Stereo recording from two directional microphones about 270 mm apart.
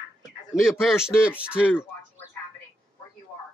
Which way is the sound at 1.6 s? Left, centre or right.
Centre.